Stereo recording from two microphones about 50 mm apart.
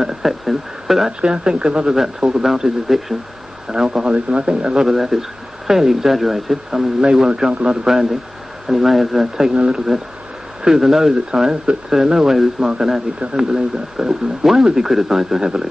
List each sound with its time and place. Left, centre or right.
0.0 s a sound: centre
1.2 s speech: centre
4.0 s speech: right; by 15.4 s centre